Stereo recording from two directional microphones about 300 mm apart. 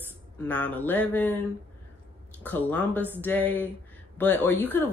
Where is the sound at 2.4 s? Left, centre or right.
Centre.